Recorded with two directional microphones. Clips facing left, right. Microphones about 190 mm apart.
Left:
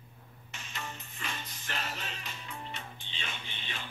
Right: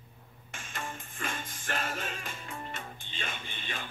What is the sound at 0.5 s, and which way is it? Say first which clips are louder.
Music: right 3 dB; 50° right (ahead or behind).